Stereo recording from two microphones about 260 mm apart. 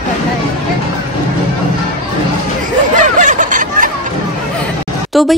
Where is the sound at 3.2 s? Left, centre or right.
Right.